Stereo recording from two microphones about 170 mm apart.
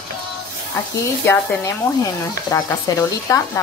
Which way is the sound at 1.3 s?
15° left (ahead or behind).